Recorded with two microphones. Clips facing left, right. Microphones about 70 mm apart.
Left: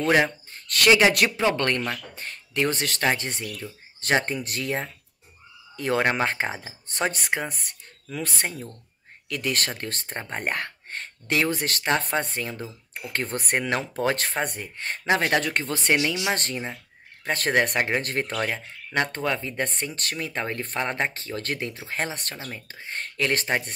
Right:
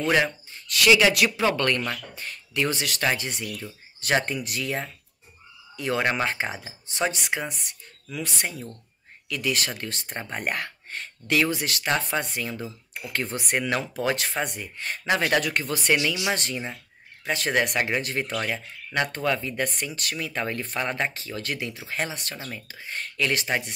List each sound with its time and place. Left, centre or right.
0.5 s speech: left
6.9 s speech: left
17.6 s speech: left